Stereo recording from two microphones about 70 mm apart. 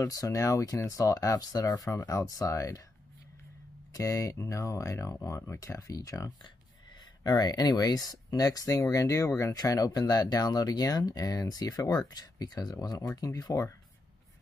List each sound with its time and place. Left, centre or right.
0.0 s speech: left
3.9 s speech: left
7.2 s speech: left
9.6 s speech: left